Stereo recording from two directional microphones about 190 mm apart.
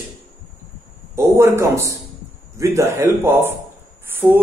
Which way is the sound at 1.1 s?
15° right (ahead or behind).